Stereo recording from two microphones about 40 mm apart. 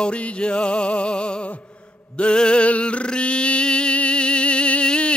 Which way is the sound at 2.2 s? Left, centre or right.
Left.